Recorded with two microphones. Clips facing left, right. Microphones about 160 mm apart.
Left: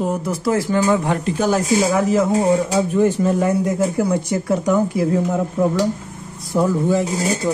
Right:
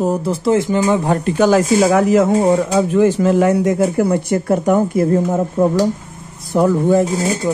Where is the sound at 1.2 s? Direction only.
80° right; by 2.3 s 65° right (ahead or behind).